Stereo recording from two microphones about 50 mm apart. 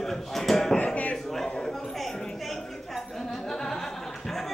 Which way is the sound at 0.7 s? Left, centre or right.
Left.